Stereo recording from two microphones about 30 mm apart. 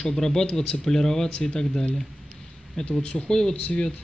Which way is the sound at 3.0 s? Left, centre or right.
Left.